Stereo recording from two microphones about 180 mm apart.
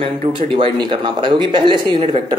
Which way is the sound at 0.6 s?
25° right (ahead or behind).